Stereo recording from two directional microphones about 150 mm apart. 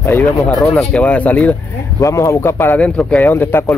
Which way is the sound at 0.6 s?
5° left (ahead or behind).